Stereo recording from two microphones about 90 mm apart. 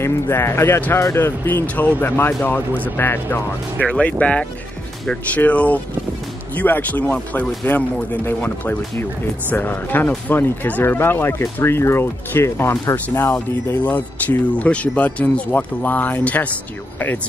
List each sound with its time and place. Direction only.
0.0 s speech: 30° left (ahead or behind)